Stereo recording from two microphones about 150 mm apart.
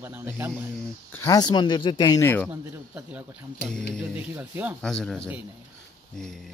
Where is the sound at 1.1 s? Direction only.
25° left (ahead or behind).